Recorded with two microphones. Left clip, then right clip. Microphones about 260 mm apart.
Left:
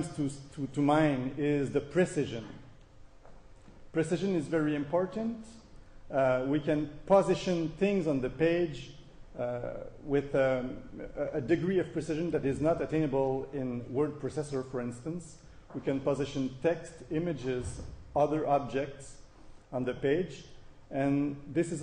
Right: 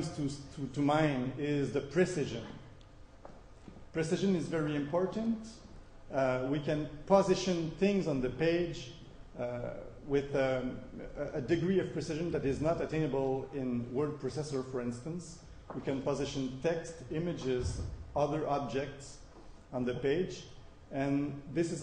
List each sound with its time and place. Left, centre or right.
0.2 s a man's voice: left
3.9 s a man's voice: left